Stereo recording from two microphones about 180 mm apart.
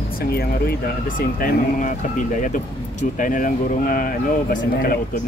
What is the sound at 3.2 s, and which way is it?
Speech, 45° left (ahead or behind).